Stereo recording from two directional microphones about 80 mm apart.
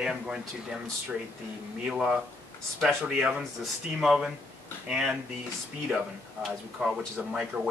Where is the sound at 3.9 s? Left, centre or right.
Centre.